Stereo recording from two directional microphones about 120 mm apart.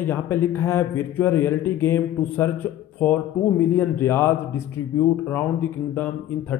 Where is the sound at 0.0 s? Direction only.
20° left (ahead or behind).